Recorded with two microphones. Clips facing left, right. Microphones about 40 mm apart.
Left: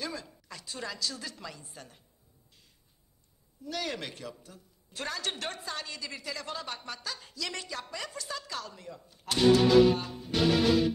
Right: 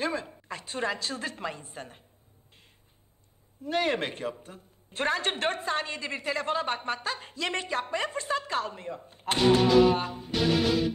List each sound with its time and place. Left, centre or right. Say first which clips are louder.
0.0 s a woman's voice: right 8 dB; right
3.6 s a woman's voice: right 8 dB; right